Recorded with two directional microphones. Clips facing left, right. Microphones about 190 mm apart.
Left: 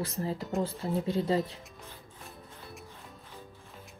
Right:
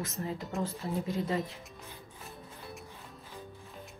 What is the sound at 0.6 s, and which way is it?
Speech, 30° left (ahead or behind).